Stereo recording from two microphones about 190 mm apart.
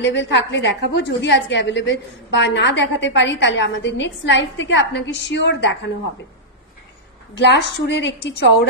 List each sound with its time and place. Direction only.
0.0 s a woman's voice: 65° left (ahead or behind)
7.3 s a woman's voice: 65° left (ahead or behind)